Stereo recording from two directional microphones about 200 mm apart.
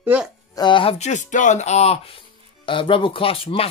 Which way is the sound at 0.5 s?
25° left (ahead or behind).